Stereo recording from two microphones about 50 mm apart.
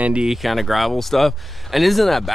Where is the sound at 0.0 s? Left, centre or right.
Right.